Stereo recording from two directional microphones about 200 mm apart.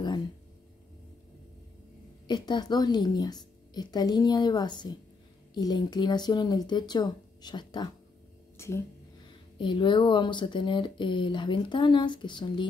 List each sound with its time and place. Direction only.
2.2 s a woman's voice: 20° left (ahead or behind)
9.6 s speech: 25° left (ahead or behind)